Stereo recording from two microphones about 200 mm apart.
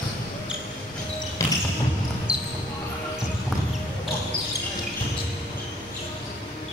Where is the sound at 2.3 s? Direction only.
5° right (ahead or behind).